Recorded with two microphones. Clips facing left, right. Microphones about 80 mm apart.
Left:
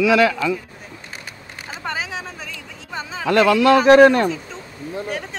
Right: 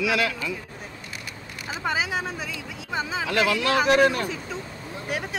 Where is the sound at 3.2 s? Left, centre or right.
Left.